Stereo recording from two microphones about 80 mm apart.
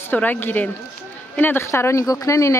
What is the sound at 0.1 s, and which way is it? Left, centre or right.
A woman's voice, left.